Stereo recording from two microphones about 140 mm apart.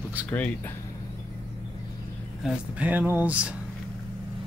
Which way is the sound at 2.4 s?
10° right (ahead or behind).